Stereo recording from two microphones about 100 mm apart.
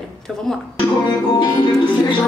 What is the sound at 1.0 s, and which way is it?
Music, 45° left (ahead or behind).